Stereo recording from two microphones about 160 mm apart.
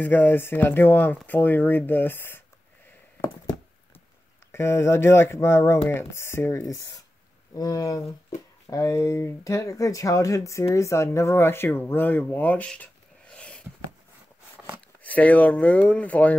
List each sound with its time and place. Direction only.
0.0 s speech: 10° left (ahead or behind)
4.5 s speech: 15° left (ahead or behind)
15.0 s speech: 10° left (ahead or behind)